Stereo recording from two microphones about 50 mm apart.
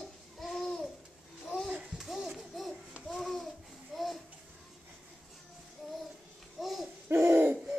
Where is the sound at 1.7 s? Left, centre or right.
Centre.